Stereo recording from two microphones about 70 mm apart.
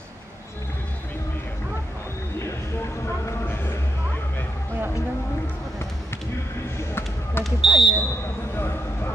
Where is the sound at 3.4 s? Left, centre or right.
Left.